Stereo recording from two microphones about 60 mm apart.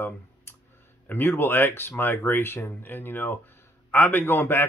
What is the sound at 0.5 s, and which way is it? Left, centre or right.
Clicking, left.